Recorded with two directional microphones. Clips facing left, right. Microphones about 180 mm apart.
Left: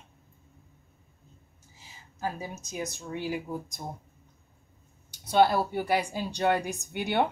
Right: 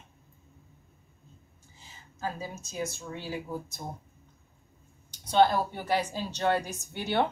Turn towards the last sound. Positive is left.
turn(degrees=15)  # may be behind; listen again after turning